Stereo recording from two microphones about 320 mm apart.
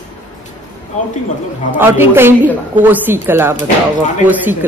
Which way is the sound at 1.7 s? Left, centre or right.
Centre.